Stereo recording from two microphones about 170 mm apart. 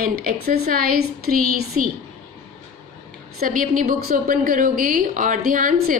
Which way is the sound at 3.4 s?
55° right (ahead or behind).